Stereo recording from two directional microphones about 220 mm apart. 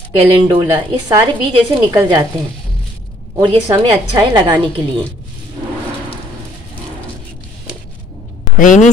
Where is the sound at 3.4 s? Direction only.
20° right (ahead or behind).